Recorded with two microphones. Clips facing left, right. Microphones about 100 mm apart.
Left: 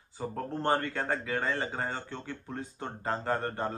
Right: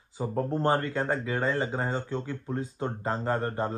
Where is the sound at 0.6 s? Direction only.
35° right (ahead or behind).